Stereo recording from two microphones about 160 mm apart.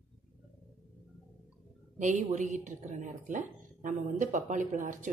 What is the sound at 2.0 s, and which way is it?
A woman's voice, 50° right (ahead or behind).